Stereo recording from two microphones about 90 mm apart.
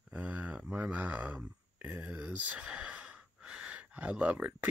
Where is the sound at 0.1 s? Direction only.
15° right (ahead or behind).